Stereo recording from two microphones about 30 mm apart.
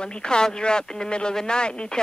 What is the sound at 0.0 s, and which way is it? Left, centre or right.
Speech, left.